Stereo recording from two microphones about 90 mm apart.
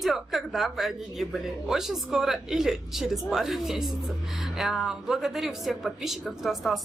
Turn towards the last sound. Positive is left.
turn(degrees=0)  # may be behind; listen again after turning